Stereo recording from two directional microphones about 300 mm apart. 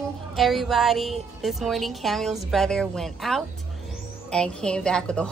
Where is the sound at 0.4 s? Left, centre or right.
Centre.